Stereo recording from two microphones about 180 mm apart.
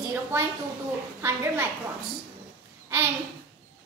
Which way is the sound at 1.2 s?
15° right (ahead or behind).